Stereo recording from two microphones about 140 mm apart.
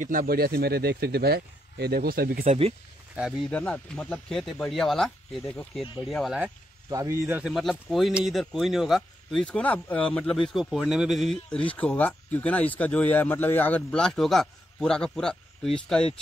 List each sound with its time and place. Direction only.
0.0 s speech: 85° right
2.0 s speech: 90° right
2.4 s speech: 50° right (ahead or behind)
3.2 s speech: 5° right (ahead or behind)
3.5 s speech: 10° left (ahead or behind)
6.9 s speech: 25° right (ahead or behind)
7.5 s speech: centre (ahead or behind)